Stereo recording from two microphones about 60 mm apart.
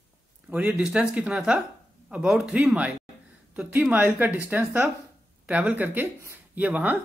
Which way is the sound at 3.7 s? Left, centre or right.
Right.